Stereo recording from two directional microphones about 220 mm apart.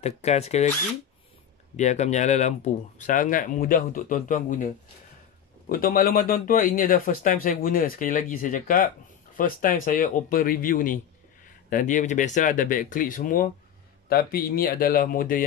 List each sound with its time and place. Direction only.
0.2 s speech: 30° left (ahead or behind)
1.8 s speech: 30° left (ahead or behind)